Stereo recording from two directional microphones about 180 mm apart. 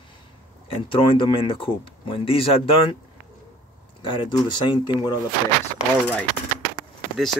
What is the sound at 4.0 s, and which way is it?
Speech, 30° left (ahead or behind).